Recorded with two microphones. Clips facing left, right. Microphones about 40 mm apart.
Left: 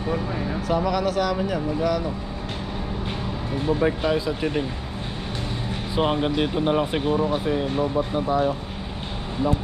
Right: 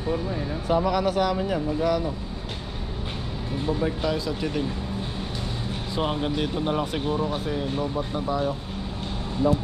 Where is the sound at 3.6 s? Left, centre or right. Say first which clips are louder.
Left 4 dB; left.